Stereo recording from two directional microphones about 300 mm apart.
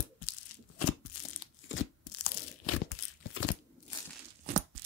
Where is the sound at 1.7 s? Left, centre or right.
Left.